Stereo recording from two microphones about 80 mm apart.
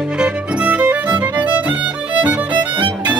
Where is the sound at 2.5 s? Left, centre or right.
Right.